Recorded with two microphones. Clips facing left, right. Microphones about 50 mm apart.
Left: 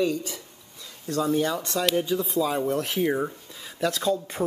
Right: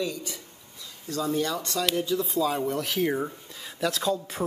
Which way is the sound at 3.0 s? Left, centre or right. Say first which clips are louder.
Left 2 dB; centre.